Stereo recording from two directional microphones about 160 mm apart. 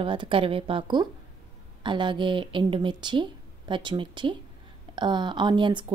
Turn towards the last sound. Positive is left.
turn(degrees=-30)  # may be behind; listen again after turning